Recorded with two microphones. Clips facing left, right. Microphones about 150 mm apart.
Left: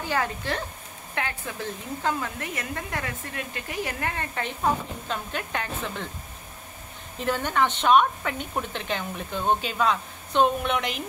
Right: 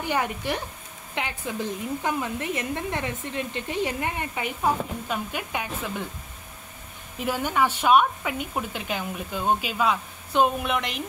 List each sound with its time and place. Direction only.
0.0 s a woman's voice: 15° right (ahead or behind)
7.2 s speech: 10° right (ahead or behind)